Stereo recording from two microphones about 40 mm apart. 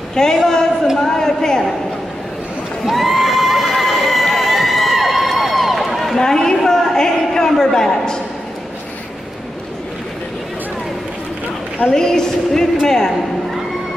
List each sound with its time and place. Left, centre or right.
0.1 s a man's voice: centre
2.8 s neigh: centre
6.1 s a sound: centre
7.7 s a man's voice: centre
11.9 s a woman's voice: centre